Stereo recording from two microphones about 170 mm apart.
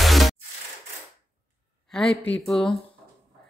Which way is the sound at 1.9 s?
5° left (ahead or behind).